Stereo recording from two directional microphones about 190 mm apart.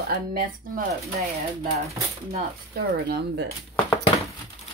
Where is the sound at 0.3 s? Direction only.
50° right (ahead or behind).